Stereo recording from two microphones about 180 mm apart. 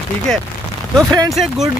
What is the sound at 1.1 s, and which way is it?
Speech, 20° right (ahead or behind).